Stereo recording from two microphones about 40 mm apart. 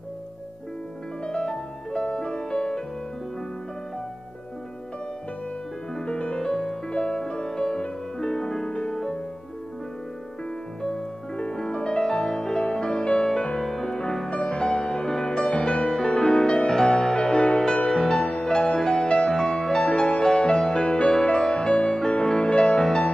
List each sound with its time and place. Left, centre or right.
1.2 s music: left
6.0 s music: left
6.5 s music: centre
6.9 s music: centre
8.7 s music: left
10.8 s music: centre
13.6 s music: centre
19.0 s music: left
19.3 s music: centre
20.0 s music: left
20.5 s music: centre